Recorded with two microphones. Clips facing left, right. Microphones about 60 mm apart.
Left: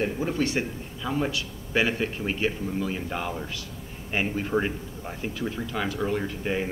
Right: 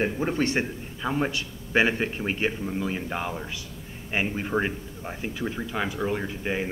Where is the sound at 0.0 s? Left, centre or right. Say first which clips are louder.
Right 1 dB; right.